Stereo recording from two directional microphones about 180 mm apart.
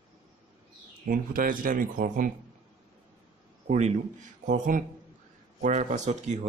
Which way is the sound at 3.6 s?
40° right (ahead or behind).